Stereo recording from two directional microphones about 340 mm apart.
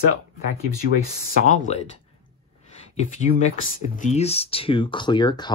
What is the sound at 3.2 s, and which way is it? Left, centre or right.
Speech, left.